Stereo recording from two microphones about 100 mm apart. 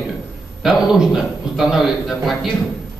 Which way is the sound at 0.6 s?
5° right (ahead or behind).